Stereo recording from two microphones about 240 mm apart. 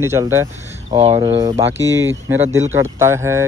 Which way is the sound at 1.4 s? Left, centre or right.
Centre.